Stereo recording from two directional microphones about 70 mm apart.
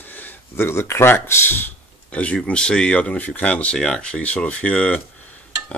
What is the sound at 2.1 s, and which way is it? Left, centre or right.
Speech, centre.